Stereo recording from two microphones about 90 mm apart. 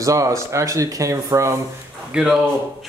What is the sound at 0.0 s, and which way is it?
Speech, 35° right (ahead or behind).